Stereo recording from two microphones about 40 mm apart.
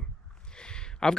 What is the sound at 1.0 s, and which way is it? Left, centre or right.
Speech, centre.